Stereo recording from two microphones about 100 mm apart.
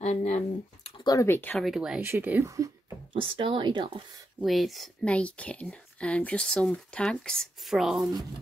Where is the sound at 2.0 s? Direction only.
20° right (ahead or behind).